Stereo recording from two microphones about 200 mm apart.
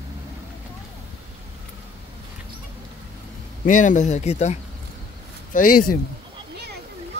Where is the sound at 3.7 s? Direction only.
40° left (ahead or behind).